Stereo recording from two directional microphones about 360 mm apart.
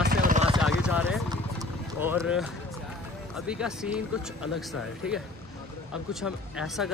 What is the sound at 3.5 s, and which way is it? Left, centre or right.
Speech, centre.